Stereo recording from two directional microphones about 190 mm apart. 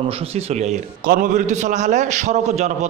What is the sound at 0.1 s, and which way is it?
A man's voice, 30° right (ahead or behind).